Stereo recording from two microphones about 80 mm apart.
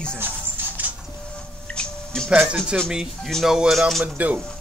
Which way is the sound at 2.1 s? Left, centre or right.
Centre.